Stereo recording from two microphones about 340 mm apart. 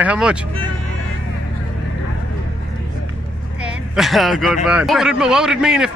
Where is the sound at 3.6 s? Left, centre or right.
Centre.